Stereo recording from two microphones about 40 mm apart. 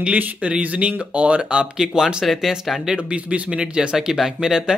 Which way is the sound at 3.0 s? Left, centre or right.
Right.